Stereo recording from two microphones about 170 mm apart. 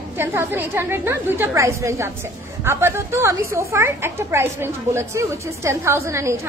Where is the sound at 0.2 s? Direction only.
10° right (ahead or behind).